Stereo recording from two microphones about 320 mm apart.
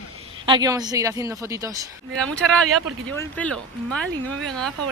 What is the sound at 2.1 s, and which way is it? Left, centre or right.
Speech, centre.